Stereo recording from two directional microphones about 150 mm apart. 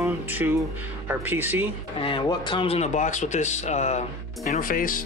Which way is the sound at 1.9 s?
35° left (ahead or behind).